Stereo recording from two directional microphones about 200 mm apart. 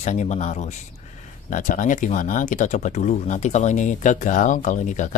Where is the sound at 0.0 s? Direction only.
35° left (ahead or behind).